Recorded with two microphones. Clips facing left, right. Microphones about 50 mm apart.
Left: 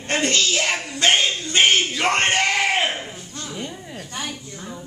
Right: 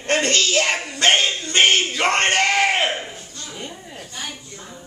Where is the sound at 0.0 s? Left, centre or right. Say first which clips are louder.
Right 2 dB; right.